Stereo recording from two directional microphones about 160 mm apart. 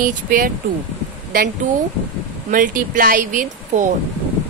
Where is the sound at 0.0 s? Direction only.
60° right (ahead or behind).